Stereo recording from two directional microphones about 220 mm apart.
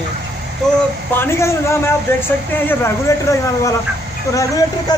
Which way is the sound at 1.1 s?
10° left (ahead or behind).